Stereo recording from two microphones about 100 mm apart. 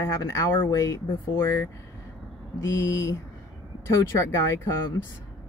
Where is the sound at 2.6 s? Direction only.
30° left (ahead or behind).